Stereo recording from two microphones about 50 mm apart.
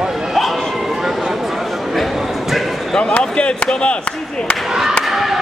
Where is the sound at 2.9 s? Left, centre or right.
Centre.